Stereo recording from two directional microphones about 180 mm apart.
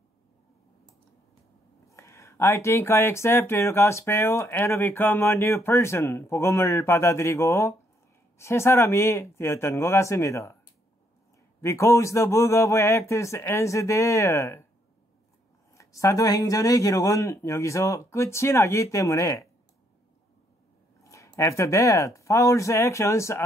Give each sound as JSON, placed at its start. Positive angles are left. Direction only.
{"t": 1.9, "sound": "speech", "side_deg": 15}
{"t": 11.6, "sound": "speech", "side_deg": 15}
{"t": 15.7, "sound": "speech", "side_deg": 15}
{"t": 21.0, "sound": "speech", "side_deg": 15}